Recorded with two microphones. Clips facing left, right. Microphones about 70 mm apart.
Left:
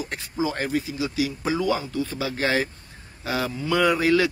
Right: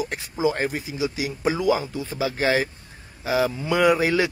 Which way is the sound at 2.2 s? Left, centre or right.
Centre.